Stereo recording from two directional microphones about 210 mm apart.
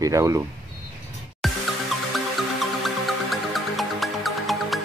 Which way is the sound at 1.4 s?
Centre (ahead or behind).